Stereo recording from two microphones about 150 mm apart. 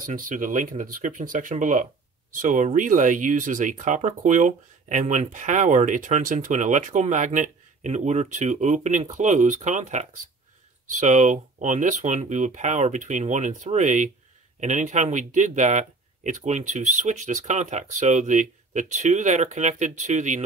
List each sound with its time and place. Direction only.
0.0 s speech: 65° right (ahead or behind)